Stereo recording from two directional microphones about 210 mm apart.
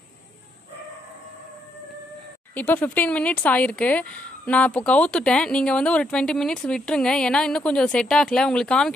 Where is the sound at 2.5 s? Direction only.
5° left (ahead or behind).